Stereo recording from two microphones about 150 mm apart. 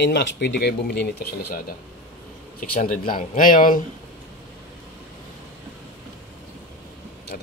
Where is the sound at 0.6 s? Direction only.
90° left.